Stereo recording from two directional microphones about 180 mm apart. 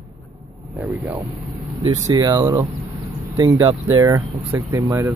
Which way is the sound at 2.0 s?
20° right (ahead or behind).